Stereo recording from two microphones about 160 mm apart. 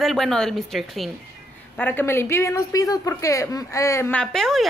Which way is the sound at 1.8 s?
10° left (ahead or behind).